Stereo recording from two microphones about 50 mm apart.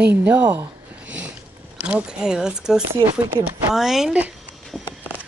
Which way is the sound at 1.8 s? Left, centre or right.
Right.